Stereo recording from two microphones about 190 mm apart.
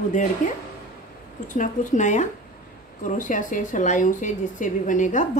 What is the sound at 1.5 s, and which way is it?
Speech, 40° left (ahead or behind).